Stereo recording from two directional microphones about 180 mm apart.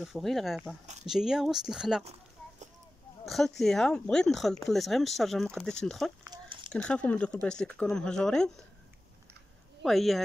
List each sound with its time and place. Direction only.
0.0 s speech: centre (ahead or behind)
3.3 s speech: centre (ahead or behind)
6.2 s a sound: 25° right (ahead or behind)
6.7 s speech: 5° left (ahead or behind)
9.8 s speech: centre (ahead or behind)